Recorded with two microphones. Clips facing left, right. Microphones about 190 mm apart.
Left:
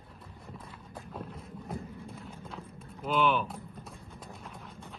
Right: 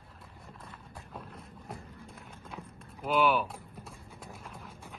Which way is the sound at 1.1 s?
Centre (ahead or behind).